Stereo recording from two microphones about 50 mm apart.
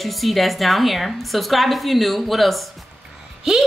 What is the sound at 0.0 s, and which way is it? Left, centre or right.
A woman's voice, centre.